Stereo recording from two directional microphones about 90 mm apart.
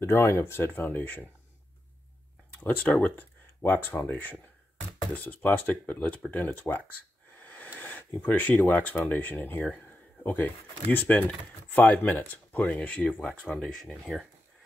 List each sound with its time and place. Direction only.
0.0 s speech: 30° left (ahead or behind)
2.6 s speech: 20° left (ahead or behind)
5.1 s speech: 15° left (ahead or behind)
7.4 s a sound: 20° left (ahead or behind)
9.1 s speech: 20° left (ahead or behind)
9.8 s a sound: 20° left (ahead or behind)
10.9 s speech: 20° left (ahead or behind)